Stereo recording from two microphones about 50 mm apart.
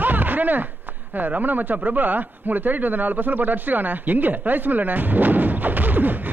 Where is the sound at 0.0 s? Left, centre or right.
Right.